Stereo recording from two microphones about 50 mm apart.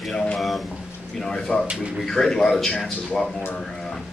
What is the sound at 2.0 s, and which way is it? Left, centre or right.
Speech, centre.